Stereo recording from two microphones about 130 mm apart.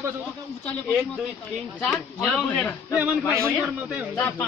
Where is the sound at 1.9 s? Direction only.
Centre (ahead or behind).